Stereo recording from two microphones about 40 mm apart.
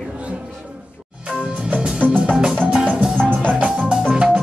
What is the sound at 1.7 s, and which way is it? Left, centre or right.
Music, right.